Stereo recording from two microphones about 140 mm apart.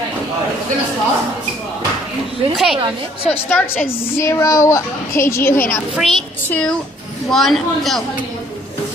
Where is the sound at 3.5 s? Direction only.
15° left (ahead or behind).